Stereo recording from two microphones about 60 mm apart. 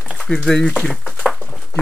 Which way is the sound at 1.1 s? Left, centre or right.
Centre.